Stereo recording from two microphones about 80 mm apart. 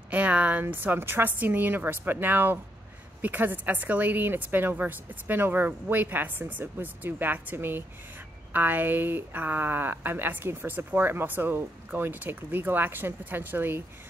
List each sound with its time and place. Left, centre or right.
0.1 s speech: centre